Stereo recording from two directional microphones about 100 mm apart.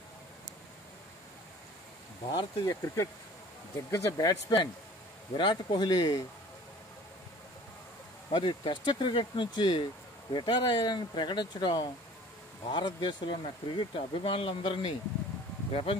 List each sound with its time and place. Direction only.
2.3 s speech: 35° left (ahead or behind)
5.4 s speech: 50° left (ahead or behind)
8.3 s speech: 55° left (ahead or behind)
15.7 s speech: 70° left (ahead or behind)